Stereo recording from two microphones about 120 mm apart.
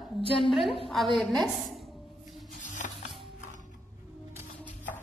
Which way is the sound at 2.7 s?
90° left.